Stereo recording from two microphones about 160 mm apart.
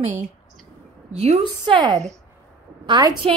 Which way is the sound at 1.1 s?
40° right (ahead or behind).